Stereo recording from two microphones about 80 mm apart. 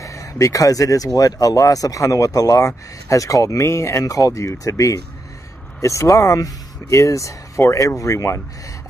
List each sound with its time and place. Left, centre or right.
0.0 s speech: left